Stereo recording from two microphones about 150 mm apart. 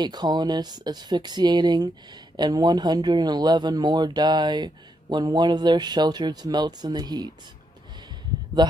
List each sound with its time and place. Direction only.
0.0 s speech: 30° right (ahead or behind)
8.6 s speech: 30° right (ahead or behind)